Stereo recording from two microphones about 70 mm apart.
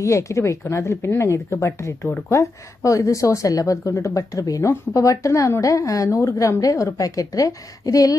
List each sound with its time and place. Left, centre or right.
0.0 s a woman's voice: left